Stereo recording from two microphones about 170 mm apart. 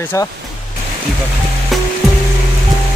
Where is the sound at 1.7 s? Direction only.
Centre (ahead or behind).